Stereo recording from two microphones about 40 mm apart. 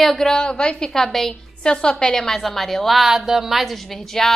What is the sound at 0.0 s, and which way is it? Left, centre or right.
Speech, centre.